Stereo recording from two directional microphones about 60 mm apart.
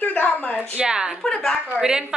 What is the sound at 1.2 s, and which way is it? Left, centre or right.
Speech, centre.